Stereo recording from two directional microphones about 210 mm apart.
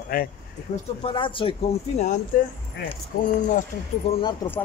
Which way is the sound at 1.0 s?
25° left (ahead or behind).